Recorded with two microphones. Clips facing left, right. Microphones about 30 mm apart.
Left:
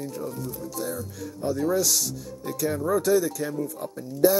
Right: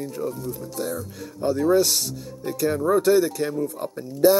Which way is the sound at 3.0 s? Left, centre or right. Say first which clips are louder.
Right 3 dB; right.